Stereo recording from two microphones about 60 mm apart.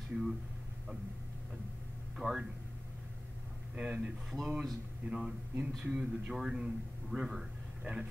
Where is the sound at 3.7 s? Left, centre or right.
Centre.